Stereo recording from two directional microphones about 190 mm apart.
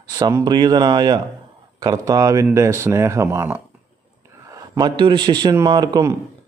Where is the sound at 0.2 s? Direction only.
20° right (ahead or behind).